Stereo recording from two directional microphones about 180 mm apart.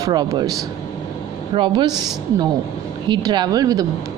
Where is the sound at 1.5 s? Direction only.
25° right (ahead or behind).